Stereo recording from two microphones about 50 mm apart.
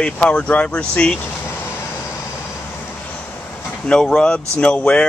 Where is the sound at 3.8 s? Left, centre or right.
Centre.